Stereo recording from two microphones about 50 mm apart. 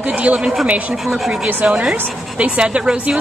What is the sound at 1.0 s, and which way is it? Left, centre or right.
Speech, centre.